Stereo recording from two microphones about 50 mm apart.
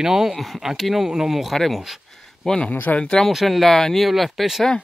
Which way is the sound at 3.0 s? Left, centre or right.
Centre.